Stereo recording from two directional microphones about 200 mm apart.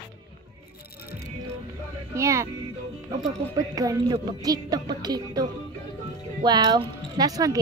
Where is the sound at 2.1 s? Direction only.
15° right (ahead or behind).